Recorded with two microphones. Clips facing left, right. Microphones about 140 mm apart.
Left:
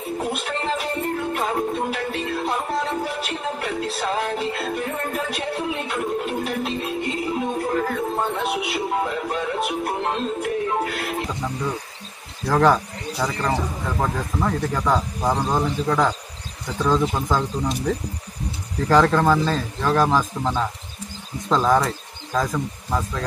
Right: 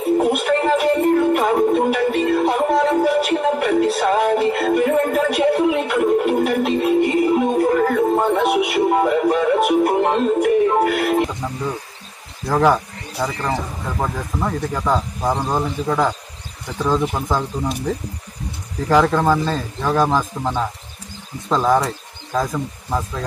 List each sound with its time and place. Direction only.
0.2 s music: 65° right (ahead or behind)
11.2 s radio: 5° right (ahead or behind)
12.4 s speech: 5° right (ahead or behind)